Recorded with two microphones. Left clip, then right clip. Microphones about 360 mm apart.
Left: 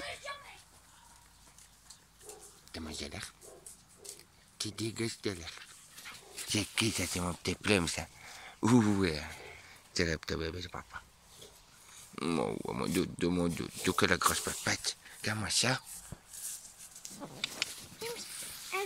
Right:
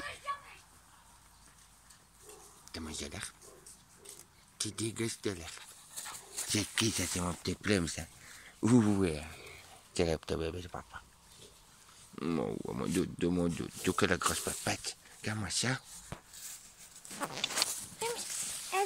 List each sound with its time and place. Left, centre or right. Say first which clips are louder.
2.7 s speech: even; centre
4.6 s speech: even; centre
12.2 s speech: left 2 dB; centre
17.2 s a sound: right 4 dB; right